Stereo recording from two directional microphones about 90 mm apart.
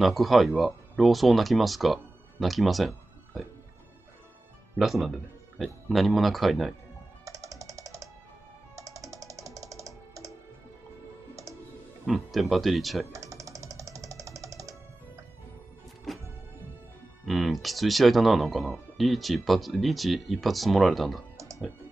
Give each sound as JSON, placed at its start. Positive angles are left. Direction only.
{"t": 0.0, "sound": "speech", "side_deg": 0}
{"t": 4.7, "sound": "speech", "side_deg": 0}
{"t": 7.2, "sound": "music", "side_deg": -35}
{"t": 12.1, "sound": "speech", "side_deg": 0}
{"t": 13.1, "sound": "music", "side_deg": -35}
{"t": 16.1, "sound": "music", "side_deg": 0}
{"t": 17.3, "sound": "speech", "side_deg": 0}